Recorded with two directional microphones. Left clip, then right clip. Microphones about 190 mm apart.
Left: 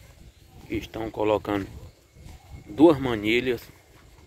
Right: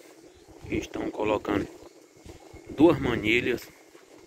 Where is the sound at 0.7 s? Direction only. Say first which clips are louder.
Even; 20° left (ahead or behind).